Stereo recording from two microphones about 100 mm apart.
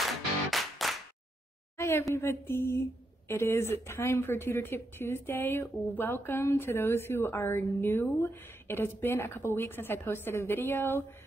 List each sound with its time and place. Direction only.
0.0 s music: centre (ahead or behind)
1.8 s a sound: 25° left (ahead or behind)
2.1 s a woman's voice: 25° left (ahead or behind)